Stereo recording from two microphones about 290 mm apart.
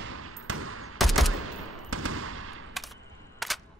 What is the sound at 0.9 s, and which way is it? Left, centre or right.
Fusillade, centre.